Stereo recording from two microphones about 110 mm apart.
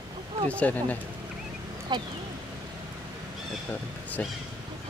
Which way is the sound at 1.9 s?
45° right (ahead or behind).